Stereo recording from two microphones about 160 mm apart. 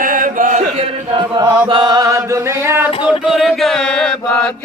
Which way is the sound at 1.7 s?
25° right (ahead or behind).